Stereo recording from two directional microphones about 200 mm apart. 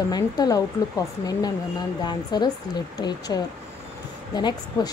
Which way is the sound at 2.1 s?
20° left (ahead or behind).